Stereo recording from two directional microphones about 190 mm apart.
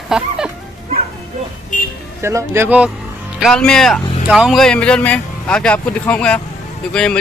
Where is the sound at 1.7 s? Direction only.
45° left (ahead or behind).